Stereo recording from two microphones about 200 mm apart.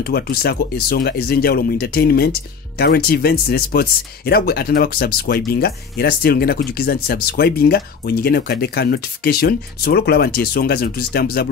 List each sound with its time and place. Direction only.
0.0 s speech: 50° left (ahead or behind)